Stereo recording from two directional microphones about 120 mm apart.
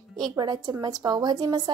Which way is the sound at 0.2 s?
35° right (ahead or behind).